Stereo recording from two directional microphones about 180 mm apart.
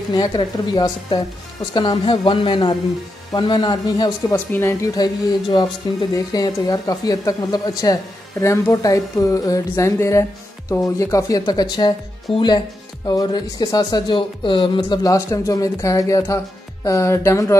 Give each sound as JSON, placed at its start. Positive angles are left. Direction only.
{"t": 0.1, "sound": "speech", "side_deg": 25}